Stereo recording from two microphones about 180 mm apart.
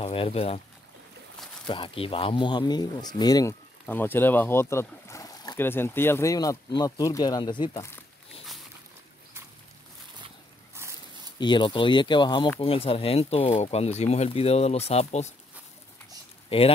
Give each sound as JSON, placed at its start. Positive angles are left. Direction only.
{"t": 0.0, "sound": "speech", "side_deg": 35}
{"t": 1.7, "sound": "speech", "side_deg": 30}
{"t": 3.8, "sound": "speech", "side_deg": 10}
{"t": 10.8, "sound": "dog", "side_deg": -15}
{"t": 11.3, "sound": "speech", "side_deg": 25}
{"t": 16.4, "sound": "speech", "side_deg": 30}